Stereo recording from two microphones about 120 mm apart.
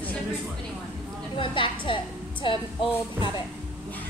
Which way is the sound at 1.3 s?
45° left (ahead or behind).